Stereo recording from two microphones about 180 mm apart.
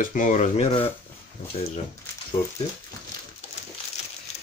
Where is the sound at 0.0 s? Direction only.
45° left (ahead or behind).